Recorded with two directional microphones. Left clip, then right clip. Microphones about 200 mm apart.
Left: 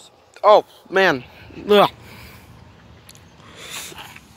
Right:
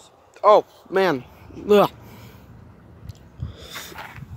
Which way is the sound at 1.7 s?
10° right (ahead or behind).